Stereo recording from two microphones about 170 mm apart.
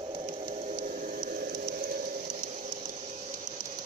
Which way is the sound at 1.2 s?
60° right (ahead or behind).